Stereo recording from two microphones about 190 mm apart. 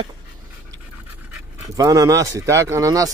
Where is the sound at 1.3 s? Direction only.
15° right (ahead or behind).